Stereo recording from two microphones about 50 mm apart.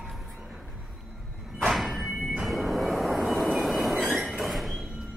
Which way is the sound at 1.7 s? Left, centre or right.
Centre.